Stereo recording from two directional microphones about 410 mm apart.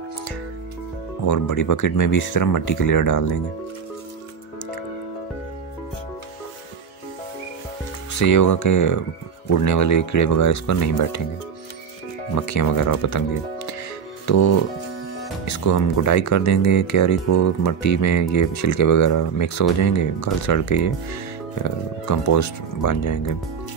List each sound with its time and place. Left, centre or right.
1.2 s speech: left
8.2 s speech: left
12.4 s speech: left
14.2 s speech: left